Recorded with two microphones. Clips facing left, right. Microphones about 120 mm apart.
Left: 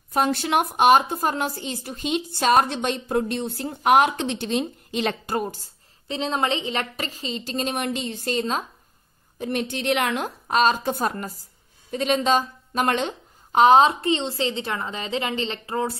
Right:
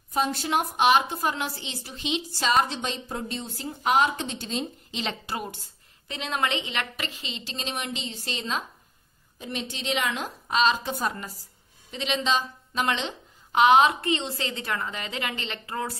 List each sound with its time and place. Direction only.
0.1 s a woman's voice: 65° left (ahead or behind); by 16.0 s 25° left (ahead or behind)